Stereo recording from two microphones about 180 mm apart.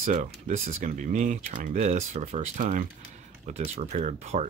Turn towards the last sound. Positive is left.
turn(degrees=-40)  # may be behind; listen again after turning